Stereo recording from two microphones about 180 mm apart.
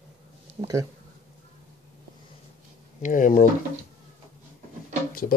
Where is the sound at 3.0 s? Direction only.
45° left (ahead or behind).